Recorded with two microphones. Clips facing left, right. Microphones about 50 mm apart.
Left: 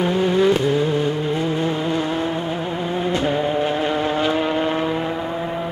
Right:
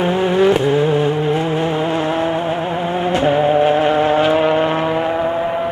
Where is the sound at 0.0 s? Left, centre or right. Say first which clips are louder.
Right 3 dB; right.